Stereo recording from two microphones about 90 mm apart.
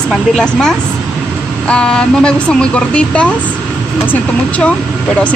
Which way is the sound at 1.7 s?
10° left (ahead or behind).